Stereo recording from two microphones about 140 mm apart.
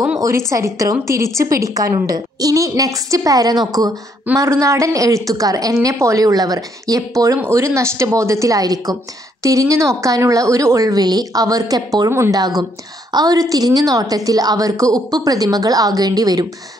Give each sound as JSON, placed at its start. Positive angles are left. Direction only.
{"t": 0.5, "sound": "a woman's voice", "side_deg": -20}